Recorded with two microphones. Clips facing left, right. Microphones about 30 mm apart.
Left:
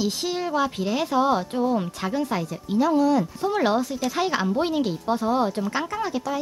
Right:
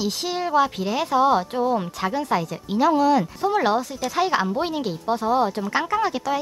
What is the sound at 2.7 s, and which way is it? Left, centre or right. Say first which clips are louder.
Speech: right 2 dB; right.